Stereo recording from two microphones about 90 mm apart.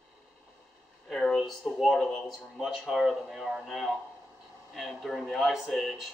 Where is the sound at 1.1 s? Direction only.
5° left (ahead or behind).